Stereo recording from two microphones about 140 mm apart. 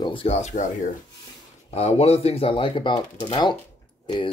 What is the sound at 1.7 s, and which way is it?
Speech, 50° left (ahead or behind).